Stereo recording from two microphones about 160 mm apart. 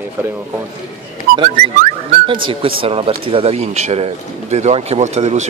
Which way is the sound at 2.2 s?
35° right (ahead or behind).